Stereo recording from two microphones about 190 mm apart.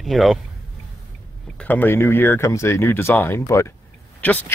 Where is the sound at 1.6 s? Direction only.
10° left (ahead or behind).